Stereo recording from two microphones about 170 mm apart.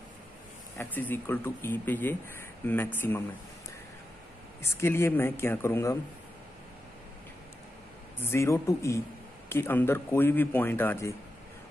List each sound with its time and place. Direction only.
0.7 s a man's voice: 10° left (ahead or behind)
4.6 s a man's voice: 15° left (ahead or behind)
8.2 s a man's voice: 15° left (ahead or behind)